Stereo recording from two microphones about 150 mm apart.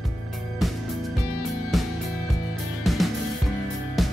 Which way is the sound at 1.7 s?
Centre (ahead or behind).